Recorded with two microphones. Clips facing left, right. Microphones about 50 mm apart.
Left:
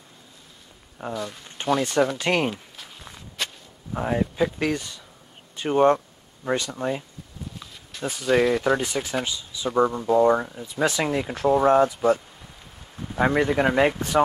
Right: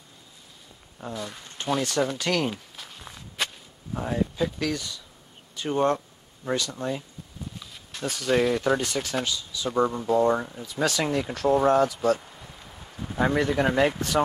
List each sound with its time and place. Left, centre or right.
1.1 s speech: centre
1.8 s speech: left
2.5 s walk: centre
3.9 s speech: left
8.0 s speech: centre
13.2 s speech: centre